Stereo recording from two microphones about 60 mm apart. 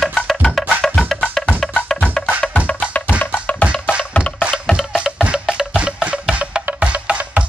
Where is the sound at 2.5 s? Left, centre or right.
Left.